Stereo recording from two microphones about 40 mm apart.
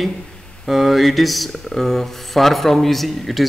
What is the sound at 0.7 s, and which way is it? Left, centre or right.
Speech, centre.